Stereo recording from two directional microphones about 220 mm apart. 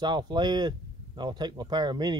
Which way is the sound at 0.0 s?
20° right (ahead or behind).